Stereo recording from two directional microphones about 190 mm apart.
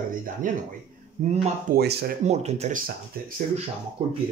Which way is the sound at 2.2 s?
35° right (ahead or behind).